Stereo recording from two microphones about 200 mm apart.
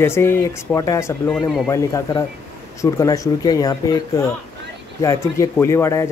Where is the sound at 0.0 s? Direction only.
10° left (ahead or behind).